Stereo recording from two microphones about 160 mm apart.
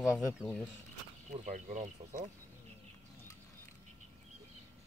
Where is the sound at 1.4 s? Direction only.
50° right (ahead or behind).